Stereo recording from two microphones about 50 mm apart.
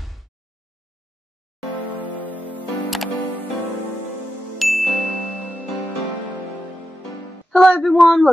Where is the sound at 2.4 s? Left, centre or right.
Left.